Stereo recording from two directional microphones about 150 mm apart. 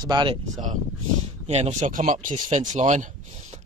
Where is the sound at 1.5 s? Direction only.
50° right (ahead or behind).